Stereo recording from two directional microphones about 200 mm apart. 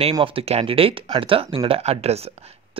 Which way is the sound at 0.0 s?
25° right (ahead or behind).